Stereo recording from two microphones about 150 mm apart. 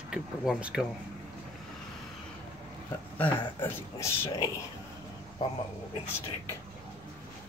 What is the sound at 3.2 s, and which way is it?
Speech, 15° left (ahead or behind).